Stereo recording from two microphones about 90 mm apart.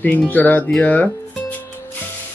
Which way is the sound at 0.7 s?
20° left (ahead or behind).